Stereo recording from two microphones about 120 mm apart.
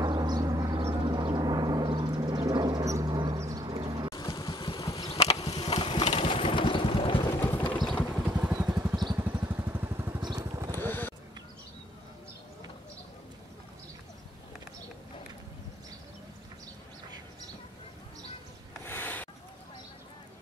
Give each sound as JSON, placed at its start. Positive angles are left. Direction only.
{"t": 0.0, "sound": "gong", "side_deg": -35}
{"t": 3.3, "sound": "a sound", "side_deg": -25}
{"t": 3.6, "sound": "music", "side_deg": -35}
{"t": 4.1, "sound": "vehicle", "side_deg": 30}
{"t": 5.0, "sound": "a sound", "side_deg": 55}
{"t": 5.7, "sound": "vehicle", "side_deg": 45}
{"t": 6.1, "sound": "a sound", "side_deg": 50}
{"t": 7.3, "sound": "vehicle", "side_deg": 15}
{"t": 8.3, "sound": "vehicle", "side_deg": -10}
{"t": 10.4, "sound": "motorcycle", "side_deg": -25}
{"t": 10.8, "sound": "a sound", "side_deg": 15}
{"t": 18.9, "sound": "rub", "side_deg": 15}